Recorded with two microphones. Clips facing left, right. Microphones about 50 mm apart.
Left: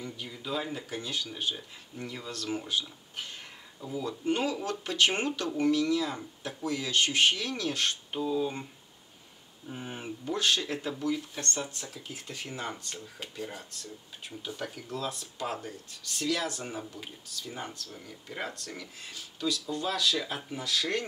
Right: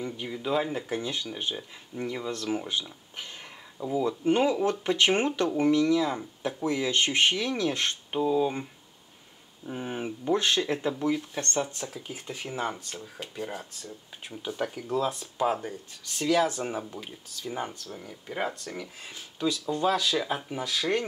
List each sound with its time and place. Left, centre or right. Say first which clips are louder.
0.0 s speech: right 7 dB; right
3.8 s speech: right 8 dB; centre
4.2 s speech: right 5 dB; right
9.7 s speech: right 6 dB; right
11.6 s speech: right 5 dB; centre
19.1 s speech: right 3 dB; right